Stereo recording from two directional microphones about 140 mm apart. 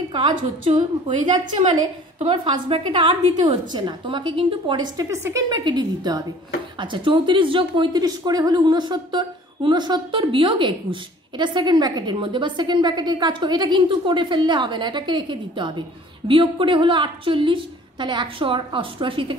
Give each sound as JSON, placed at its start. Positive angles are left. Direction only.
{"t": 0.7, "sound": "a woman's voice", "side_deg": -30}
{"t": 2.1, "sound": "a woman's voice", "side_deg": -40}
{"t": 5.1, "sound": "a woman's voice", "side_deg": -20}